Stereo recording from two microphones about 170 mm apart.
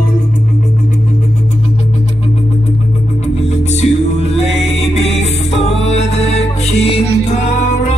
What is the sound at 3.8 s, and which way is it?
Music, 40° left (ahead or behind).